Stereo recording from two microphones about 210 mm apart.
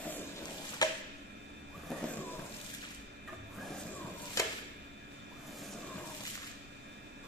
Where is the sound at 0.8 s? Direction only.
20° left (ahead or behind).